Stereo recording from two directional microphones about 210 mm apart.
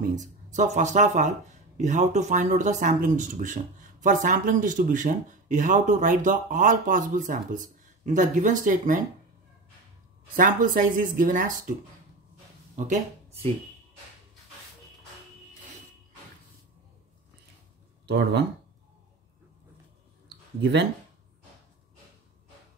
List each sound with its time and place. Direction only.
0.1 s speech: 35° right (ahead or behind)
10.3 s speech: 40° right (ahead or behind)
12.7 s speech: 35° right (ahead or behind)
18.0 s speech: 50° right (ahead or behind)
20.2 s a sound: 55° right (ahead or behind)